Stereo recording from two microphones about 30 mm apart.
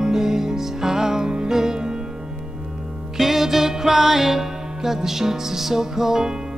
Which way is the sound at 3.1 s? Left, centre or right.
Centre.